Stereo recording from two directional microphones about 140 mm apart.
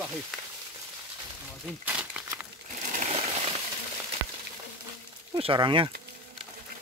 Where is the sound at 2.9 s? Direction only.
60° right (ahead or behind).